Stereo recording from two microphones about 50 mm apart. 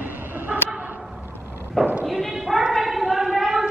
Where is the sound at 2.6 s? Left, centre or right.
Centre.